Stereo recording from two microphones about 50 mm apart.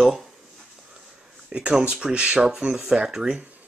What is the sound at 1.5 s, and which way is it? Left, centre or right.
Speech, right.